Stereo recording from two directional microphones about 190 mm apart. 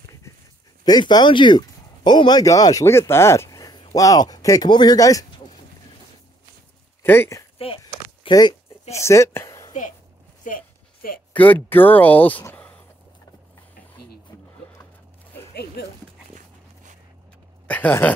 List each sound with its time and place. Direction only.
0.8 s speech: 20° left (ahead or behind)
7.0 s speech: 10° left (ahead or behind)
7.5 s a sound: 30° left (ahead or behind)
8.9 s speech: 15° left (ahead or behind)
9.7 s a sound: 40° left (ahead or behind)
11.3 s speech: 10° left (ahead or behind)
15.8 s speech: 55° left (ahead or behind)
17.6 s speech: 10° left (ahead or behind)